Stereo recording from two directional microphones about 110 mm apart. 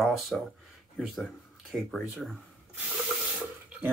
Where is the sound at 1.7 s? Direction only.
Centre (ahead or behind).